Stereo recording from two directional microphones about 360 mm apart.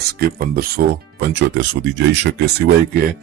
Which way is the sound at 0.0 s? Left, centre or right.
Right.